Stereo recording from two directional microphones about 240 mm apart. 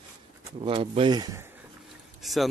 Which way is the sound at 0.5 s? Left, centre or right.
Right.